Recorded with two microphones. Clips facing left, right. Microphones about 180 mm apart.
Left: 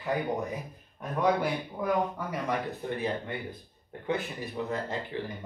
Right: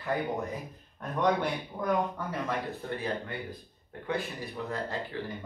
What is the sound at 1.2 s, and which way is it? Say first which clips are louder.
Speech: left 1 dB; 5° left (ahead or behind).